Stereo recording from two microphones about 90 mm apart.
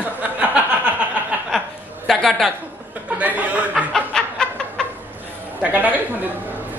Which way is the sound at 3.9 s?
5° left (ahead or behind).